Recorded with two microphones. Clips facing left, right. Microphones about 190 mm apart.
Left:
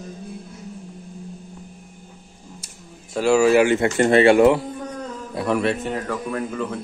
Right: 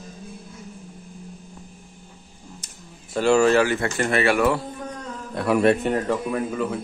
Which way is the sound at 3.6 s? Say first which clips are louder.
Left 5 dB; 20° left (ahead or behind).